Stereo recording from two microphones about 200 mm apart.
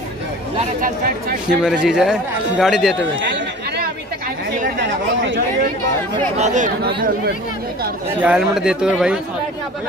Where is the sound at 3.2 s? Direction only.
60° right (ahead or behind).